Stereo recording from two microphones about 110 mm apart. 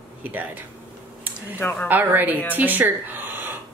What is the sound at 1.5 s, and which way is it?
Speech, 20° left (ahead or behind).